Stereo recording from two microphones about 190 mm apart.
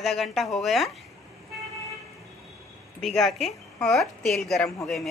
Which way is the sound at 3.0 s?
Centre (ahead or behind).